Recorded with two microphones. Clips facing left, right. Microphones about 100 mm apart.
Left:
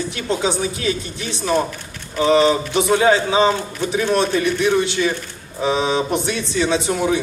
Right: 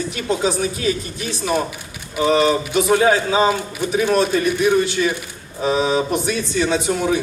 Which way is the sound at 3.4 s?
10° right (ahead or behind).